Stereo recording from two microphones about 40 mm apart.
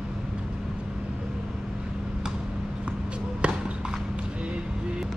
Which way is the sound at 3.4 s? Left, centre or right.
Right.